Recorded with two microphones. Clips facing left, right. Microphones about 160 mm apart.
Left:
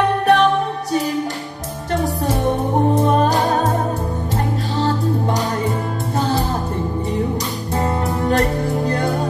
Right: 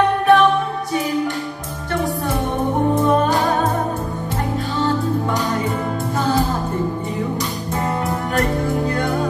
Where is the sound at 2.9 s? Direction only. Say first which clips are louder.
Even; 40° left (ahead or behind).